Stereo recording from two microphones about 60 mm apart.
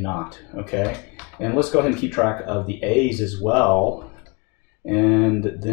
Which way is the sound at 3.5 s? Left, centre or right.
Centre.